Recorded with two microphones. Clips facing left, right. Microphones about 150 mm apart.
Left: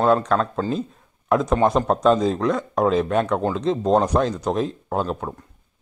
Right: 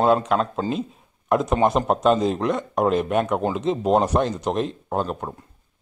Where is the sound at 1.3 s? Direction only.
Centre (ahead or behind).